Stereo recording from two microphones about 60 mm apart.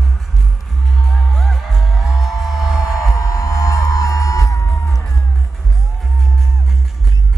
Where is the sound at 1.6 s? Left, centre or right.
Centre.